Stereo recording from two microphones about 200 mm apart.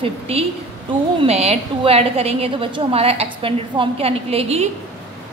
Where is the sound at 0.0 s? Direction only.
30° right (ahead or behind).